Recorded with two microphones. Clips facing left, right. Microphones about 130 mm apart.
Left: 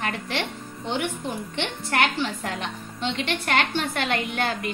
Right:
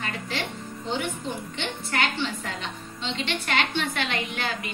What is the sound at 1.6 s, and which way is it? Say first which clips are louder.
A woman's voice: left 4 dB; 60° left (ahead or behind).